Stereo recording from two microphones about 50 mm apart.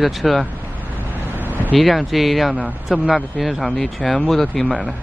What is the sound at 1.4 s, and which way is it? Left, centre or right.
Vehicle, right.